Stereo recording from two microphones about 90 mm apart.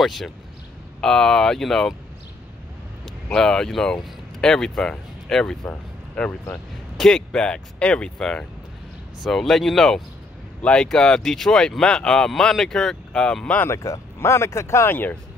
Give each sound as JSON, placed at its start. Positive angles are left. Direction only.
{"t": 0.0, "sound": "speech", "side_deg": 0}
{"t": 3.3, "sound": "speech", "side_deg": 10}
{"t": 5.7, "sound": "a sound", "side_deg": 15}
{"t": 7.0, "sound": "speech", "side_deg": 5}
{"t": 13.6, "sound": "speech", "side_deg": 35}